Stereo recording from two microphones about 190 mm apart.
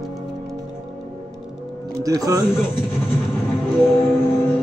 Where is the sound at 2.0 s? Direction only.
20° right (ahead or behind).